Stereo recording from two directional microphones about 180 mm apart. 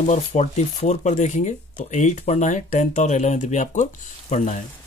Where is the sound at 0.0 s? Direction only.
40° left (ahead or behind).